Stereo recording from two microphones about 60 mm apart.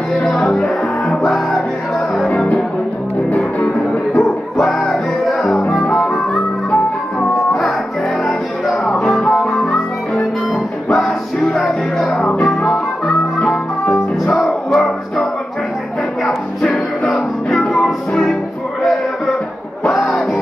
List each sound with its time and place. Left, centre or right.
0.1 s music: centre
2.2 s music: left
4.2 s music: centre
8.2 s music: centre
12.2 s music: centre
12.4 s music: centre
16.3 s music: centre
19.9 s music: centre